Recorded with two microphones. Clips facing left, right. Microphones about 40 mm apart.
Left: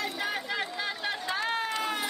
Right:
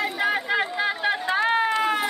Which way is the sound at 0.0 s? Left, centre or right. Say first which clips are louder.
Right 8 dB; right.